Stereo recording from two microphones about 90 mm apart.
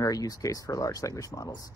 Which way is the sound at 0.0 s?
40° left (ahead or behind).